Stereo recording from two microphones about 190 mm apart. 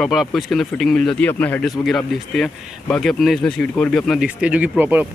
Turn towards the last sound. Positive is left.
turn(degrees=-10)  # may be behind; listen again after turning